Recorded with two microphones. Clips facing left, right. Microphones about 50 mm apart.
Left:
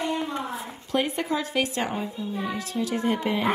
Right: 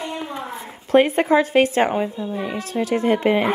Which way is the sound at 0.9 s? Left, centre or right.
Right.